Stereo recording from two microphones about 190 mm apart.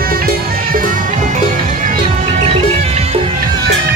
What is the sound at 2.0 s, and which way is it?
Music, 30° right (ahead or behind).